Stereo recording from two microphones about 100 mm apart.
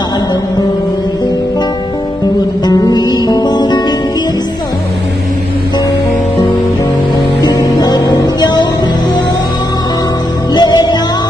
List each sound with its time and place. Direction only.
2.6 s music: 45° left (ahead or behind)
7.4 s music: 40° left (ahead or behind)
10.5 s music: 45° left (ahead or behind)